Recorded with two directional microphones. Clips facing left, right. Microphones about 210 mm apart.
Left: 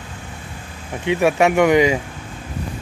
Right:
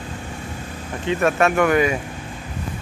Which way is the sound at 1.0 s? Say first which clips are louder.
Left 3 dB; 15° left (ahead or behind).